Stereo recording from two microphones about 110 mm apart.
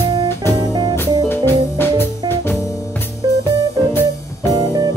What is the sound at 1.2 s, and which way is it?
Music, 20° left (ahead or behind).